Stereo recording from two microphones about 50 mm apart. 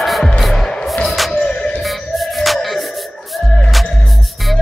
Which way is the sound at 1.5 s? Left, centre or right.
Left.